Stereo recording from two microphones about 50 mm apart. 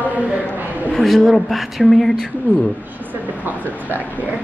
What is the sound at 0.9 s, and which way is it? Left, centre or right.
Speech, centre.